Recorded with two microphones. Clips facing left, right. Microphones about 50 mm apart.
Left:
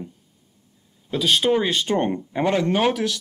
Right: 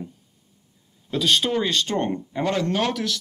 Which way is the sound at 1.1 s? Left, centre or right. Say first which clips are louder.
Left 2 dB; centre.